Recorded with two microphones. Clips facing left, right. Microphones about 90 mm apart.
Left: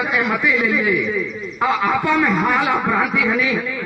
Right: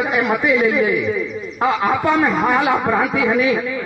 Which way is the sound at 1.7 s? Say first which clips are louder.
Right 1 dB; 40° right (ahead or behind).